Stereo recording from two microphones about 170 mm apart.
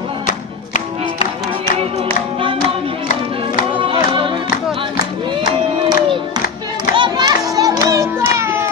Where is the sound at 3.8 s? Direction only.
30° right (ahead or behind).